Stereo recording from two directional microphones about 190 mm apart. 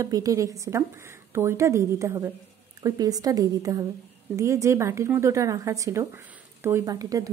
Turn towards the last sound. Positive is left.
turn(degrees=-20)  # may be behind; listen again after turning